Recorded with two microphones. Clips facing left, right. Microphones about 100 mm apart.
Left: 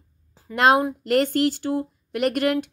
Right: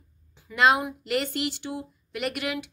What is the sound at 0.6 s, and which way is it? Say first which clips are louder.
Speech: left 4 dB; 40° left (ahead or behind).